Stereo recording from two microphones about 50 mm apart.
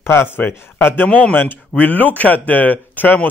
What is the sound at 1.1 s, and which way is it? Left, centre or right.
Speech, left.